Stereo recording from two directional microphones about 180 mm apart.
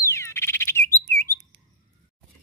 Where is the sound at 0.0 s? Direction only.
15° left (ahead or behind).